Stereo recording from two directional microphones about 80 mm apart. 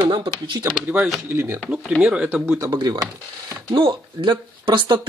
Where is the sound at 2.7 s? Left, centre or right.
Right.